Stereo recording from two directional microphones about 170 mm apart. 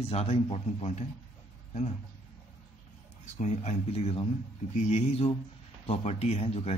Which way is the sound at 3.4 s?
40° left (ahead or behind).